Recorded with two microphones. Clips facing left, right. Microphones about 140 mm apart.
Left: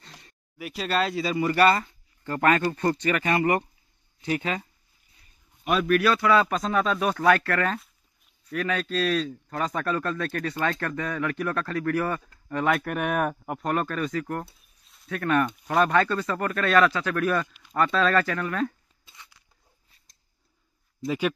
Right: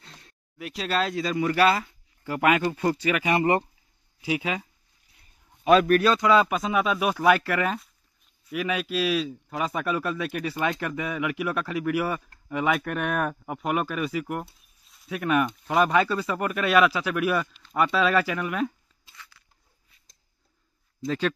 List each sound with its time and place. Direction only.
0.0 s speech: centre (ahead or behind)
3.3 s speech: 25° right (ahead or behind)
4.2 s speech: 5° right (ahead or behind)
6.0 s speech: 20° right (ahead or behind)
6.5 s speech: 5° right (ahead or behind)
13.6 s speech: 10° right (ahead or behind)
14.9 s a sound: centre (ahead or behind)
15.1 s speech: 10° right (ahead or behind)
17.5 s a sound: 10° left (ahead or behind)
17.7 s speech: 10° right (ahead or behind)
19.1 s a sound: 20° left (ahead or behind)
21.0 s a man's voice: 10° left (ahead or behind)